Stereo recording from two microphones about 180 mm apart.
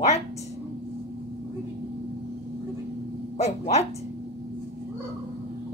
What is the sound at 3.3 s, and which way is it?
Speech, 40° left (ahead or behind).